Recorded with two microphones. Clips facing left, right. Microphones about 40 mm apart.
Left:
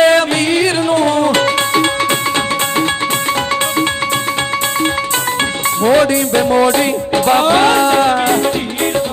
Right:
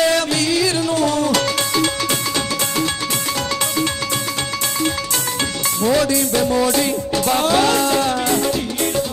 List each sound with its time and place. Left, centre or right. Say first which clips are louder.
0.0 s music: left 6 dB; left
5.8 s music: left 5 dB; left